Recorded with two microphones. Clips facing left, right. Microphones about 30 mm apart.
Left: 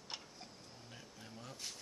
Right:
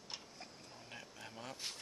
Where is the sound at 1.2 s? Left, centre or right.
Right.